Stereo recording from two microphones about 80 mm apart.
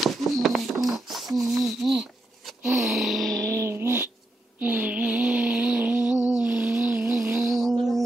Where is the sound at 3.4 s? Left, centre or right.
Right.